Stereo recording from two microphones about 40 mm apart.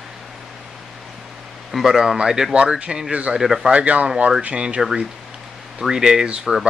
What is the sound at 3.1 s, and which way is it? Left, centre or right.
Speech, right.